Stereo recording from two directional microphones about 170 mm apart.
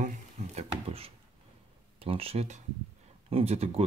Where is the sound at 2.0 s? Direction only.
35° right (ahead or behind).